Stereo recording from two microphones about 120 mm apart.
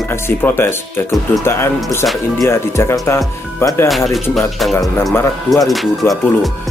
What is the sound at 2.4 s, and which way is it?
Speech, 25° left (ahead or behind).